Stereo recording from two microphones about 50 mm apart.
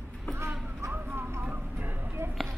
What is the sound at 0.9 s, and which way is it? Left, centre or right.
Vehicle, right.